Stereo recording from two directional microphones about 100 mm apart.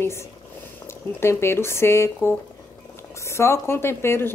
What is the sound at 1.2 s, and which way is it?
Speech, 25° left (ahead or behind).